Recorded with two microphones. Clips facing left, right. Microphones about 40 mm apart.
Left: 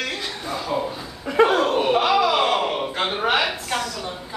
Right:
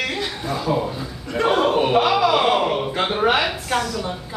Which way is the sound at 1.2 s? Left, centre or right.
Centre.